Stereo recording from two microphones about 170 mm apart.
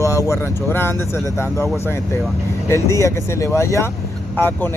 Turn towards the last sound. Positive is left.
turn(degrees=10)  # may be behind; listen again after turning